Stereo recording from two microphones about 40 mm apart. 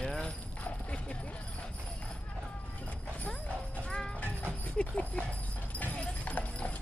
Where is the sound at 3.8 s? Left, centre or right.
Left.